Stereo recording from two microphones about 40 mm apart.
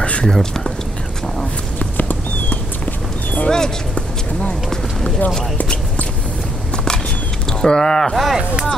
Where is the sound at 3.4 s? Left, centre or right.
Centre.